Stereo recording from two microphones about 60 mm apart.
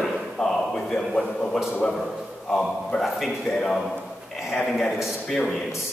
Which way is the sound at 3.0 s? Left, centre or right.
Centre.